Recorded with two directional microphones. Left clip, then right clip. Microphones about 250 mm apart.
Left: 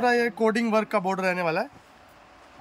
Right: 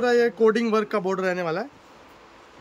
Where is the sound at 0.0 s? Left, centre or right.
Centre.